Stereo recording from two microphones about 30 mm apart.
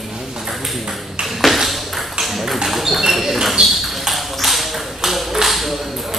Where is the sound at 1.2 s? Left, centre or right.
Centre.